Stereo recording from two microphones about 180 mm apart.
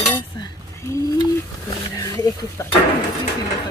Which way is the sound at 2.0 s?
20° left (ahead or behind).